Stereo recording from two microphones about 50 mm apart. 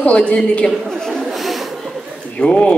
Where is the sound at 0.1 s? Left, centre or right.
Left.